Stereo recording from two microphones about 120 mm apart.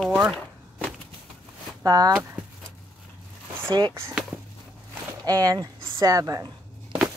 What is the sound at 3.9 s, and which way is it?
Speech, 20° right (ahead or behind).